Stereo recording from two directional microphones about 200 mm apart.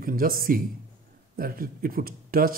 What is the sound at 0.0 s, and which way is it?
Speech, 45° right (ahead or behind).